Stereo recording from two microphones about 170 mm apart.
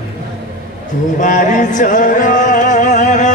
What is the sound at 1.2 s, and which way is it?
Music, 50° left (ahead or behind).